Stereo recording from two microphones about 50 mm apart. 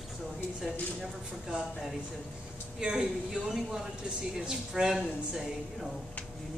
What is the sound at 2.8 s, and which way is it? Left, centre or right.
Speech, centre.